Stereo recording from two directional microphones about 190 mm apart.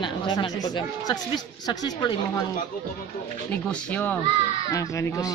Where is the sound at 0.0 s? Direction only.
25° left (ahead or behind).